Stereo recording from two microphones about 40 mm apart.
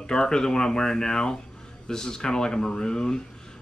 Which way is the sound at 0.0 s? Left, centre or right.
Left.